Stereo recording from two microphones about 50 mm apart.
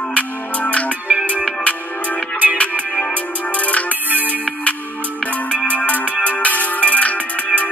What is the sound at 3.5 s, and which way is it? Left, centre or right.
Music, left.